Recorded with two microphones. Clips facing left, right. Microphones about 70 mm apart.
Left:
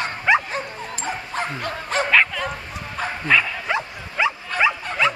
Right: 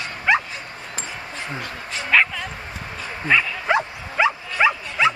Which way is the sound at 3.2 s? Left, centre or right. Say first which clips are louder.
Right 1 dB; centre.